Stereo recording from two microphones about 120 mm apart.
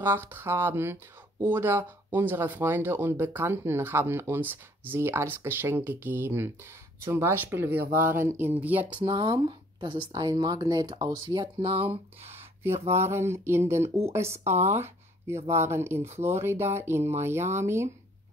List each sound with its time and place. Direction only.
0.0 s speech: 20° right (ahead or behind)
8.9 s speech: 40° right (ahead or behind)
12.3 s speech: 20° right (ahead or behind)
14.5 s speech: 70° right (ahead or behind)
14.8 s speech: 20° right (ahead or behind)